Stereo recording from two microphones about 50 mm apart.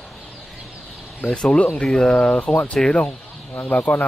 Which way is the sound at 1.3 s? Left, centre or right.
Centre.